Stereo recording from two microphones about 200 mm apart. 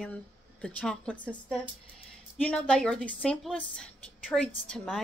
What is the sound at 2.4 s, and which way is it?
Speech, 5° left (ahead or behind).